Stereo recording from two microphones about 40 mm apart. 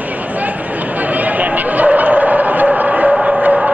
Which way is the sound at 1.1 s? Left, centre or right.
Right.